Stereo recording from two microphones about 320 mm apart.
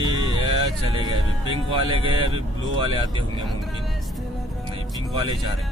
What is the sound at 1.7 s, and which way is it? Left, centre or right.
Speech, centre.